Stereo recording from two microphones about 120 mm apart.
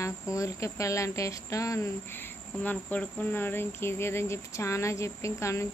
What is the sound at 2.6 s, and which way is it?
Speech, 15° left (ahead or behind).